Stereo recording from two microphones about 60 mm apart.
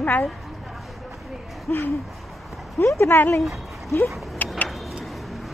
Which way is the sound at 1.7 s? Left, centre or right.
Left.